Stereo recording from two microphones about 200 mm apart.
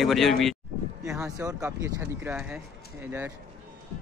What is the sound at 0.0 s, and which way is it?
Speech, centre (ahead or behind).